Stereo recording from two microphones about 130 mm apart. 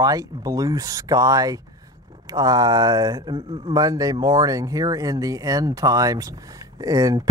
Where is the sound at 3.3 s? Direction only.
45° right (ahead or behind).